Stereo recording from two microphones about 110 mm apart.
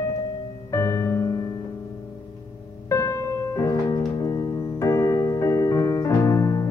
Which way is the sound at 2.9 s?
30° left (ahead or behind).